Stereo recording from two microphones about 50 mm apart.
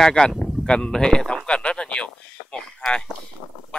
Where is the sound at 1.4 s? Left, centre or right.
Left.